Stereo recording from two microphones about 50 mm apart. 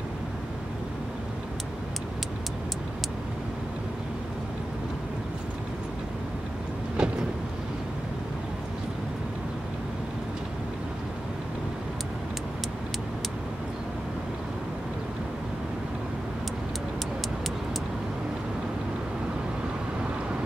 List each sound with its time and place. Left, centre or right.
7.0 s vehicle: centre